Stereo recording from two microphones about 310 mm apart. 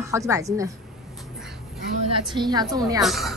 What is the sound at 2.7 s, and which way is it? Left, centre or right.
Speech, centre.